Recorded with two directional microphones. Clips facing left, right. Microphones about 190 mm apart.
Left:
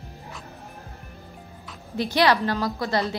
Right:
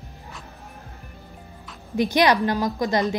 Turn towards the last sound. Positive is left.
turn(degrees=-15)  # may be behind; listen again after turning